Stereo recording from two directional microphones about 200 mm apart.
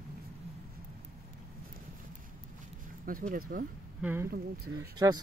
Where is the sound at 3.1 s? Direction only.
45° right (ahead or behind).